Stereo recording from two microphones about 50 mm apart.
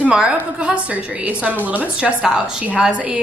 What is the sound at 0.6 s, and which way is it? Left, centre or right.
A woman's voice, right.